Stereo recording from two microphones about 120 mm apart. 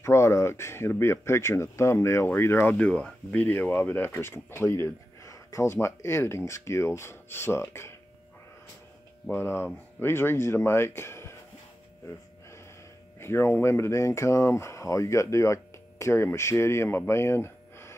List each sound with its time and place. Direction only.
0.0 s speech: 25° left (ahead or behind)
9.3 s speech: 20° left (ahead or behind)
13.2 s speech: 20° left (ahead or behind)